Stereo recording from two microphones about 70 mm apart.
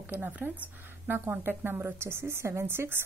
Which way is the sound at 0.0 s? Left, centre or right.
Right.